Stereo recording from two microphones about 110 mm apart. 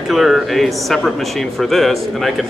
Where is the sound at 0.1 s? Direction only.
Centre (ahead or behind).